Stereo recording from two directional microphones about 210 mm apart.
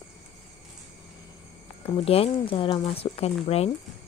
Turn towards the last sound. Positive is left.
turn(degrees=30)  # may be behind; listen again after turning